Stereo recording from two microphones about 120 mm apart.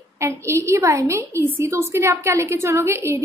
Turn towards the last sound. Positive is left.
turn(degrees=-20)  # may be behind; listen again after turning